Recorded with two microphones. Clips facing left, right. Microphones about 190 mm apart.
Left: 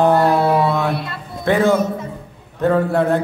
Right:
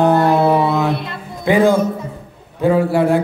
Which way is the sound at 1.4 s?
15° right (ahead or behind).